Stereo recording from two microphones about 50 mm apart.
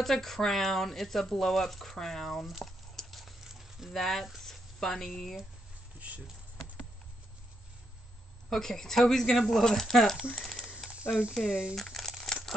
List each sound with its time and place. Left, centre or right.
0.0 s speech: centre
4.5 s a sound: centre
5.9 s speech: right
8.5 s speech: centre
11.4 s speech: centre
11.7 s crumpling: centre